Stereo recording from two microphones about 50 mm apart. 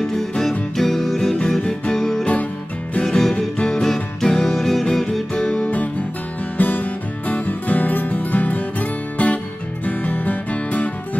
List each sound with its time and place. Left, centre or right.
0.0 s music: centre
5.6 s music: left